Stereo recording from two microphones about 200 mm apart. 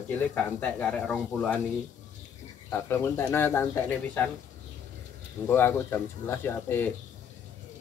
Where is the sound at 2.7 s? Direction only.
10° left (ahead or behind).